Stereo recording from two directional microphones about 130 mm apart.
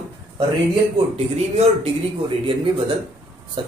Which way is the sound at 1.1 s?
50° right (ahead or behind).